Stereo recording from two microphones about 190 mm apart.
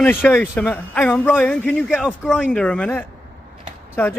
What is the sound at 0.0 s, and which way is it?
A man's voice, 10° left (ahead or behind).